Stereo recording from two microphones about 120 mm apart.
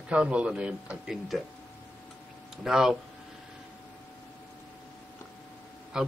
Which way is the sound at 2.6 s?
5° right (ahead or behind).